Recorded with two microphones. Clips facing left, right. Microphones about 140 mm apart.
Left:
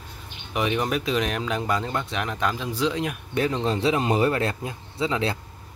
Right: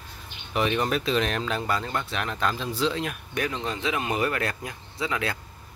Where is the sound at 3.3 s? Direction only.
30° left (ahead or behind).